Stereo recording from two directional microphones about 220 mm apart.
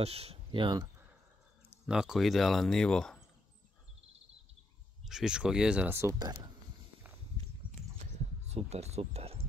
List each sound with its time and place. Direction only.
0.0 s speech: 25° right (ahead or behind)
1.9 s speech: centre (ahead or behind)
5.0 s speech: centre (ahead or behind); by 6.5 s 20° right (ahead or behind)
8.5 s speech: 30° right (ahead or behind)